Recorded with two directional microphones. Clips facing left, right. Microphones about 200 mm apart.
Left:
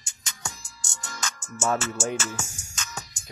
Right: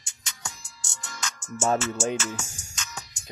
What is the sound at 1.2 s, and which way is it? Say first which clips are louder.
Music: right 2 dB; 50° left (ahead or behind).